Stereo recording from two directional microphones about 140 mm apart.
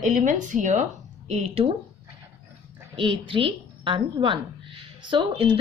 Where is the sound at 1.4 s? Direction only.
45° right (ahead or behind).